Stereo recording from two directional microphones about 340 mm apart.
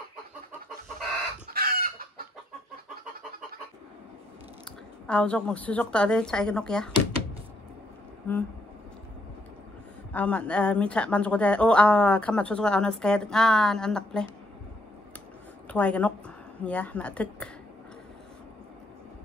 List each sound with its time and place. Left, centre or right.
1.5 s chicken: right
5.0 s a woman's voice: centre
8.3 s speech: centre
10.1 s a woman's voice: centre
15.7 s a woman's voice: centre